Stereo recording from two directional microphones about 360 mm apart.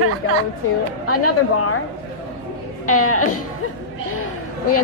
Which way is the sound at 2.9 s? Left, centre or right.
Left.